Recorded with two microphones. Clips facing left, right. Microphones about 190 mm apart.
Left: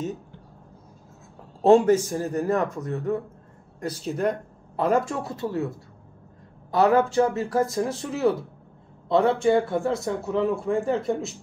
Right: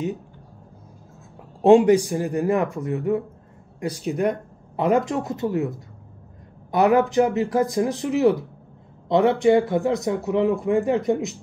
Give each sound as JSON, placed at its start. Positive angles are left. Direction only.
{"t": 1.6, "sound": "speech", "side_deg": -15}